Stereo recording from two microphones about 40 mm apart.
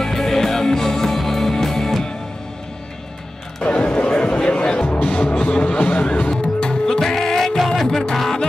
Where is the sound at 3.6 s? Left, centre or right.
Left.